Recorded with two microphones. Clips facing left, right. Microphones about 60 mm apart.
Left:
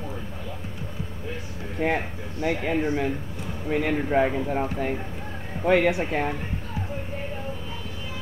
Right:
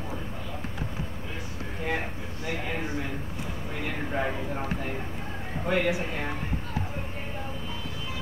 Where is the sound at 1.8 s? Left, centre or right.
Left.